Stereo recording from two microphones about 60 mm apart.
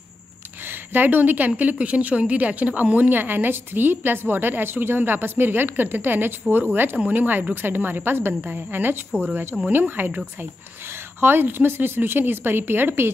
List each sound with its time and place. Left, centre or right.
0.7 s a woman's voice: right